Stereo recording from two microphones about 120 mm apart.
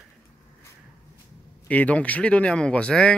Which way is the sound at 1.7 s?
10° left (ahead or behind).